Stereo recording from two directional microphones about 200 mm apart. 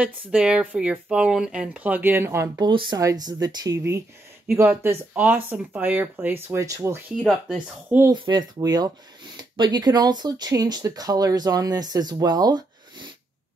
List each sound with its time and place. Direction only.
0.0 s speech: 5° right (ahead or behind)
7.2 s speech: 5° right (ahead or behind)
8.1 s speech: 20° right (ahead or behind)